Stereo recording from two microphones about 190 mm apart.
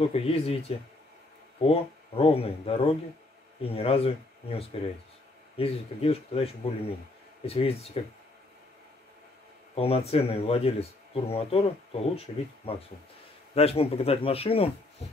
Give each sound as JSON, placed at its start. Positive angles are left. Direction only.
{"t": 0.1, "sound": "speech", "side_deg": 30}
{"t": 9.8, "sound": "speech", "side_deg": 30}